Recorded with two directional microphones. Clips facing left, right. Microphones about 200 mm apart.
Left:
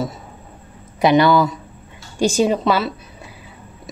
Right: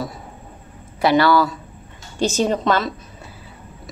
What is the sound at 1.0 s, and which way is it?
A woman's voice, 20° left (ahead or behind).